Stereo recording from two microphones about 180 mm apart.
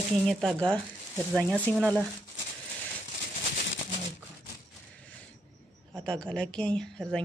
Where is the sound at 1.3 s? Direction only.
5° right (ahead or behind).